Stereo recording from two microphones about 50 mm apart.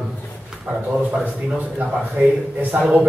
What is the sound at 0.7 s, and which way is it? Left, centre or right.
Speech, right.